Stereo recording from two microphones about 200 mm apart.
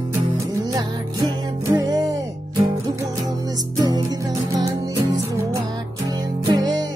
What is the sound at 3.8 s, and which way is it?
Music, 20° right (ahead or behind).